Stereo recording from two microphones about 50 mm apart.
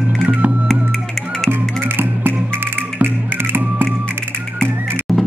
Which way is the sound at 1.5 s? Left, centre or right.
Right.